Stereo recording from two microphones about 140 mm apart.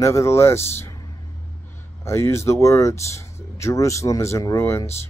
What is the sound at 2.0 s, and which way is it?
A man's voice, 20° left (ahead or behind).